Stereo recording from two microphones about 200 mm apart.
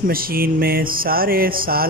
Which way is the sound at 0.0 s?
45° right (ahead or behind).